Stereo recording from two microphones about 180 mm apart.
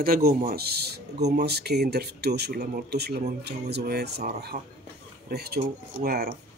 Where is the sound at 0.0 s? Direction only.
55° right (ahead or behind).